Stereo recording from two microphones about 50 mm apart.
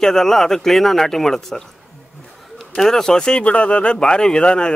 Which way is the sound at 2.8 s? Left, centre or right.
Centre.